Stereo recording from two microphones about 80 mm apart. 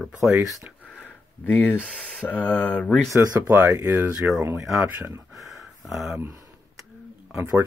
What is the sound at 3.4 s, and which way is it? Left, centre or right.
Speech, right.